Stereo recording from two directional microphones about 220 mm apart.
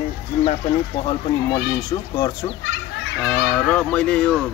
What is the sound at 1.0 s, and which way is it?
Speech, 20° left (ahead or behind).